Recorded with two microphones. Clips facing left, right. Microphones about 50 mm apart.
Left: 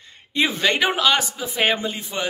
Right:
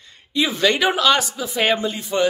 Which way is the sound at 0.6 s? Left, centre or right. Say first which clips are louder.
Right 4 dB; left.